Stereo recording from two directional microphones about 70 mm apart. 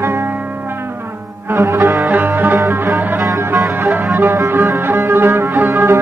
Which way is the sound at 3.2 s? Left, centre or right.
Right.